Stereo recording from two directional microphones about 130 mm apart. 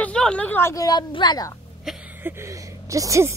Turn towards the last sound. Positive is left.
turn(degrees=-25)  # may be behind; listen again after turning